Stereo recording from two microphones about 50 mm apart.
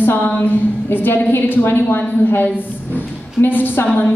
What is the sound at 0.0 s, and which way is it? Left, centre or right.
A woman's voice, left.